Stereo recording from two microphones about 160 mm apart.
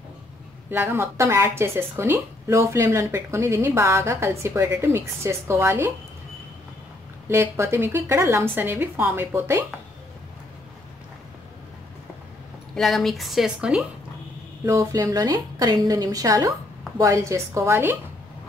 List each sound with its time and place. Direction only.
0.7 s speech: 15° right (ahead or behind)
7.2 s speech: 15° right (ahead or behind)
12.7 s speech: centre (ahead or behind)
14.7 s a woman's voice: 20° right (ahead or behind)